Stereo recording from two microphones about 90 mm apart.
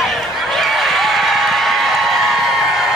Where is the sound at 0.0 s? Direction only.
Centre (ahead or behind).